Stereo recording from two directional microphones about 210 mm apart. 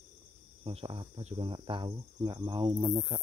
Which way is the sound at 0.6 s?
25° right (ahead or behind).